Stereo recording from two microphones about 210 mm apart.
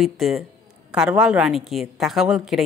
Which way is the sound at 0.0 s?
Centre (ahead or behind).